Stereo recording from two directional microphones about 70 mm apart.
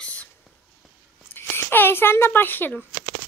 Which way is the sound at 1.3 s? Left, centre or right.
Left.